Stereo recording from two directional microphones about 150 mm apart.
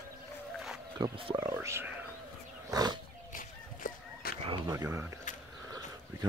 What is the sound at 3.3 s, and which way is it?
Fowl, 65° left (ahead or behind).